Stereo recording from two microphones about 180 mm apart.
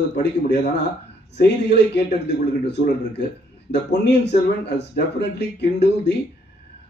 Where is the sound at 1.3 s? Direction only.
70° left (ahead or behind).